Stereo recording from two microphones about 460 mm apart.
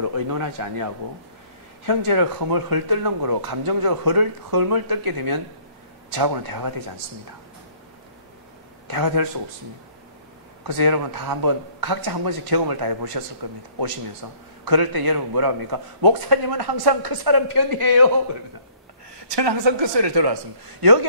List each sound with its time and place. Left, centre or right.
0.0 s speech: right
8.9 s speech: right
10.7 s speech: right
14.2 s speech: right
19.3 s a woman's voice: right